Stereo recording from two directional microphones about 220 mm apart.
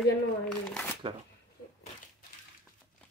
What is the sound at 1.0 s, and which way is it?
Speech, 25° right (ahead or behind).